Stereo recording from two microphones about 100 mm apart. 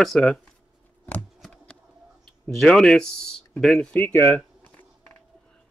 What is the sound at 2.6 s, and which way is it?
Speech, 5° left (ahead or behind).